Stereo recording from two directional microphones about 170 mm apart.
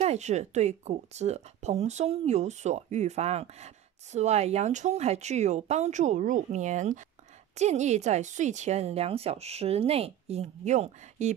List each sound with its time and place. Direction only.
0.0 s speech: 40° right (ahead or behind)